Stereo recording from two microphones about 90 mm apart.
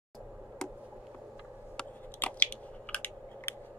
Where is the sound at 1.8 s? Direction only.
20° left (ahead or behind).